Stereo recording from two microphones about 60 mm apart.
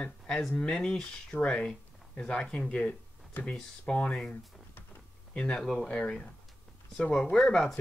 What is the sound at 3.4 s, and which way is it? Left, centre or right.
Speech, left.